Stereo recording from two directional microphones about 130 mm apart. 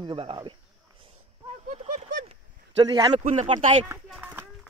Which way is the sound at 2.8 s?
30° right (ahead or behind).